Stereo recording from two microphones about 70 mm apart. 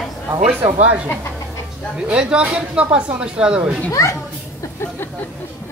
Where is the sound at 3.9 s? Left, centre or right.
Left.